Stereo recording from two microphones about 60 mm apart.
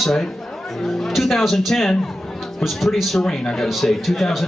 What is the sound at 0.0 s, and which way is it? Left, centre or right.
A man's voice, centre.